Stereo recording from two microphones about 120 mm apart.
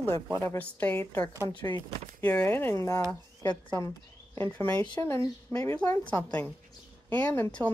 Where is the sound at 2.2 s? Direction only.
15° left (ahead or behind).